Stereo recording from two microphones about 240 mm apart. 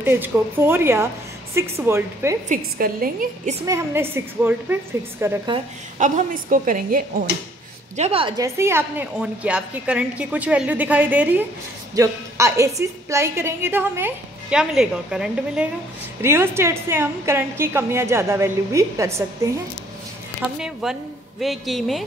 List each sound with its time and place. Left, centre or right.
0.0 s a woman's voice: centre
2.5 s a woman's voice: right
3.6 s a woman's voice: centre
5.9 s a woman's voice: right; by 22.0 s centre